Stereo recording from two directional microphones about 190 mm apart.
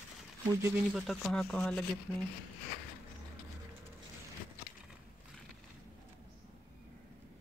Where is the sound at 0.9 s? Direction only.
Centre (ahead or behind).